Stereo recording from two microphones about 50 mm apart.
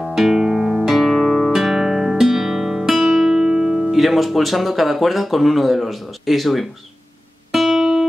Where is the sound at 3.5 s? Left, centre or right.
Centre.